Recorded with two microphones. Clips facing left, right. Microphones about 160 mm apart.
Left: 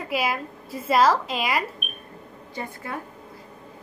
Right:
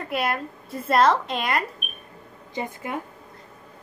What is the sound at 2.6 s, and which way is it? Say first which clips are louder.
Speech: right 3 dB; 20° right (ahead or behind).